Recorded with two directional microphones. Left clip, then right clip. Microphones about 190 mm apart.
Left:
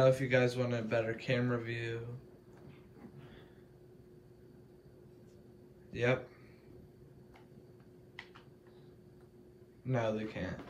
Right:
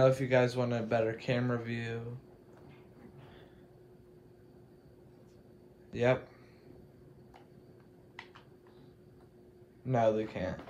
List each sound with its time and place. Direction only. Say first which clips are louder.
0.0 s speech: right 2 dB; 20° right (ahead or behind)
5.9 s a sound: right 4 dB; 20° right (ahead or behind)
9.8 s speech: right 6 dB; 15° right (ahead or behind)